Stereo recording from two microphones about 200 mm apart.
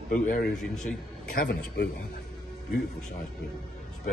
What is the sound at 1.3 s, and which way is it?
Speech, 50° left (ahead or behind).